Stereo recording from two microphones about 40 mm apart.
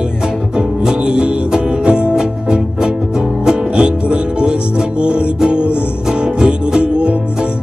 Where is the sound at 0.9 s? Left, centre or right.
Right.